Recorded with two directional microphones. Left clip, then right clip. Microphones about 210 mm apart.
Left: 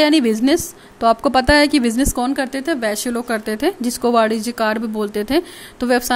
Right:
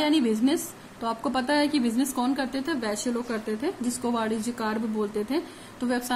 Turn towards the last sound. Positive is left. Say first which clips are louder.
# left 12 dB
turn(degrees=40)  # may be behind; listen again after turning